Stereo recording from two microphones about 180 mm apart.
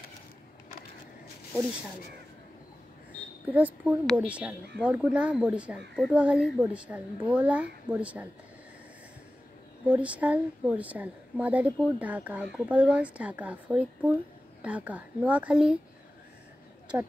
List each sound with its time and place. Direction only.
3.5 s a woman's voice: 10° right (ahead or behind)
4.0 s a woman's voice: 5° left (ahead or behind)
9.8 s a woman's voice: 5° right (ahead or behind)